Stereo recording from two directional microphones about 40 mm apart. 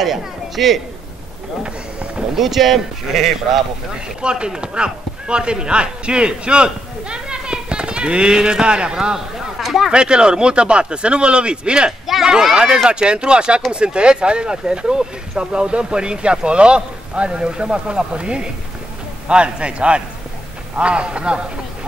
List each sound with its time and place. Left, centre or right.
0.0 s speech: centre
2.3 s speech: centre
4.2 s speech: right
9.6 s speech: centre
9.8 s speech: right